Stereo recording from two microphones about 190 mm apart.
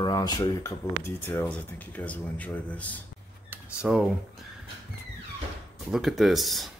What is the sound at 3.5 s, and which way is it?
Computer keyboard, 5° right (ahead or behind).